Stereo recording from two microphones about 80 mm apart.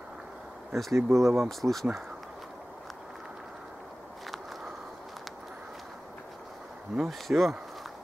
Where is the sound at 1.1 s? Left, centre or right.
Right.